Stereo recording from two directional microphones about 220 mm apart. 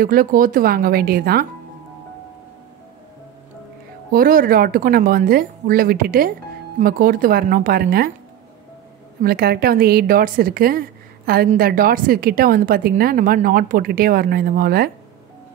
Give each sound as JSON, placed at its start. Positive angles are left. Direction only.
{"t": 0.0, "sound": "a woman's voice", "side_deg": -40}
{"t": 4.1, "sound": "a woman's voice", "side_deg": -40}
{"t": 9.2, "sound": "a woman's voice", "side_deg": -45}